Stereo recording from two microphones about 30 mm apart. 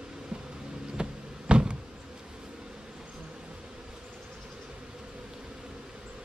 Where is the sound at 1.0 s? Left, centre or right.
Right.